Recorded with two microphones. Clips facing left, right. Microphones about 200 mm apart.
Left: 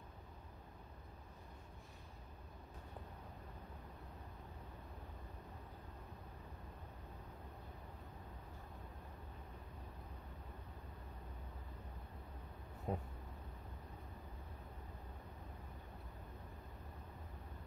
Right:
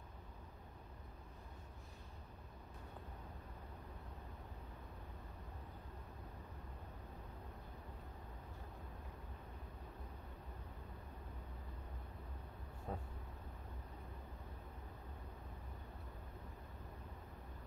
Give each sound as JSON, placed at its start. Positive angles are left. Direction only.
{"t": 12.9, "sound": "vehicle", "side_deg": 15}